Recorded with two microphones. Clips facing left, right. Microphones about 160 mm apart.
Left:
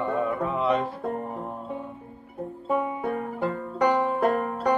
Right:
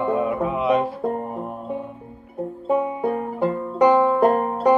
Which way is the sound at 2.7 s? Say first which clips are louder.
Right 5 dB; 30° right (ahead or behind).